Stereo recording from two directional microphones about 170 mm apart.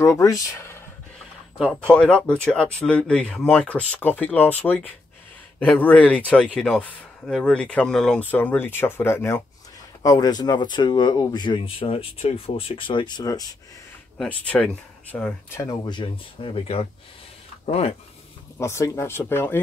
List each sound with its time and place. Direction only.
0.0 s speech: 20° left (ahead or behind)
1.6 s speech: 5° left (ahead or behind); by 13.6 s 20° left (ahead or behind)
14.1 s speech: 5° left (ahead or behind); by 17.9 s 35° left (ahead or behind)
18.6 s speech: 15° left (ahead or behind)